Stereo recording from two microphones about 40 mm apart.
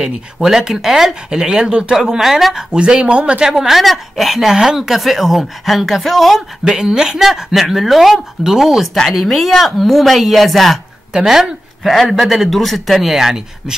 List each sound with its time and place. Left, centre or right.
0.0 s a woman's voice: centre
1.3 s speech: right
2.0 s a woman's voice: centre
2.7 s speech: right
3.4 s a woman's voice: centre
6.6 s a woman's voice: centre
11.1 s a woman's voice: centre
13.2 s a woman's voice: centre